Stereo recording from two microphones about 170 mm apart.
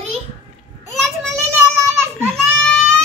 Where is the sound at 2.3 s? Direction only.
5° left (ahead or behind).